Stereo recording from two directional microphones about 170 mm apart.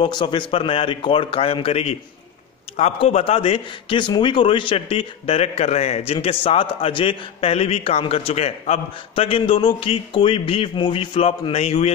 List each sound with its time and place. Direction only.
0.0 s a man's voice: 25° left (ahead or behind)